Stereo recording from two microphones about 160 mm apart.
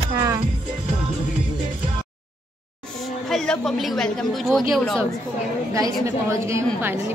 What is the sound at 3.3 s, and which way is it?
A man's voice, centre (ahead or behind).